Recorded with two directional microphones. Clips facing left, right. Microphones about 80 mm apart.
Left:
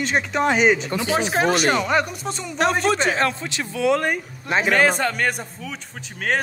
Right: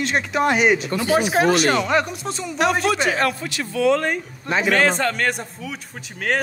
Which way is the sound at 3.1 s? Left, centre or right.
Left.